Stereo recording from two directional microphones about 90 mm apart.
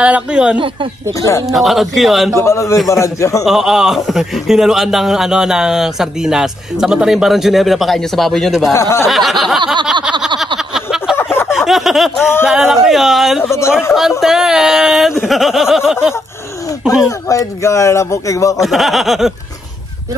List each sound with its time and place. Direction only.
0.0 s a man's voice: 10° right (ahead or behind)
2.4 s speech: 35° left (ahead or behind)
3.4 s a man's voice: 5° right (ahead or behind)
8.7 s speech: 35° left (ahead or behind)
9.0 s a man's voice: centre (ahead or behind)
10.7 s a sound: 5° right (ahead or behind)
12.2 s speech: 25° left (ahead or behind)
12.4 s a man's voice: 5° right (ahead or behind)
13.4 s speech: 30° left (ahead or behind)
14.2 s a man's voice: 5° right (ahead or behind)
17.3 s speech: 35° left (ahead or behind)
18.6 s a man's voice: centre (ahead or behind)